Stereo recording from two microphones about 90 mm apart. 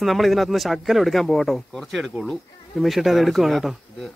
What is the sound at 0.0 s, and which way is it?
Speech, centre (ahead or behind).